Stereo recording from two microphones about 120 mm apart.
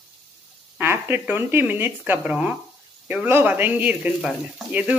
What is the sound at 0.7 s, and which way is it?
Speech, 20° right (ahead or behind).